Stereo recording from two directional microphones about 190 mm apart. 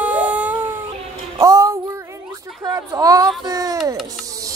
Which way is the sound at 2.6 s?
20° right (ahead or behind).